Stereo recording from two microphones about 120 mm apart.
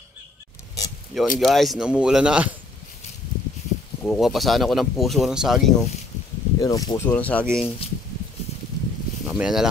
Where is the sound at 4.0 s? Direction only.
Centre (ahead or behind).